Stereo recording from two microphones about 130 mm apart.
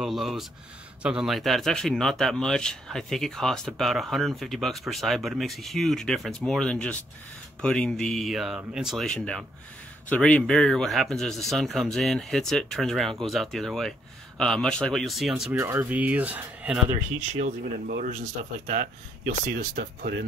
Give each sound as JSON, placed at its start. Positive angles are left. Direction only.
{"t": 0.0, "sound": "speech", "side_deg": 0}
{"t": 15.5, "sound": "speech", "side_deg": -15}
{"t": 17.2, "sound": "speech", "side_deg": -75}